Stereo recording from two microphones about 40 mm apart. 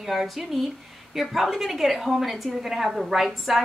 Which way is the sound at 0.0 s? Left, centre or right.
Centre.